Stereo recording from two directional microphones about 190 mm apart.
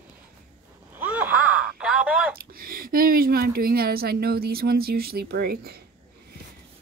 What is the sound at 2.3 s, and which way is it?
Speech, 50° right (ahead or behind).